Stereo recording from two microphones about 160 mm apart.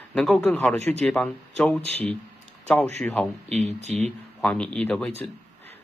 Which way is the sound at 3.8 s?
45° right (ahead or behind).